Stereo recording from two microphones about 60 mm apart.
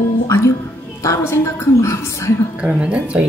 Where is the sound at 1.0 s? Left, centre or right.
Left.